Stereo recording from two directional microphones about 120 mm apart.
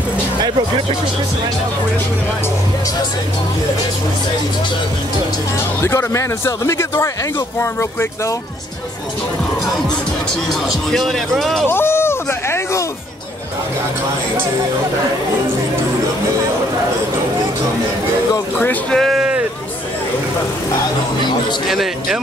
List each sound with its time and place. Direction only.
5.8 s speech: 20° left (ahead or behind)
10.7 s a man's voice: centre (ahead or behind)
11.6 s a sound: 20° left (ahead or behind)
18.6 s speech: 15° left (ahead or behind)
18.9 s a sound: centre (ahead or behind)
21.6 s a man's voice: centre (ahead or behind)